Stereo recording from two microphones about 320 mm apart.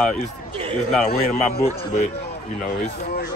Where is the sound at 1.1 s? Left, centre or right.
Left.